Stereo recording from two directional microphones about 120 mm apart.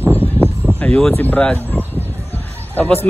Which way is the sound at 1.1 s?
15° left (ahead or behind).